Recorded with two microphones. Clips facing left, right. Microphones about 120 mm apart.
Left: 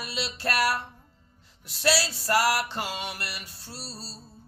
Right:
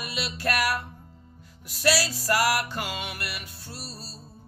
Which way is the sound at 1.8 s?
25° left (ahead or behind).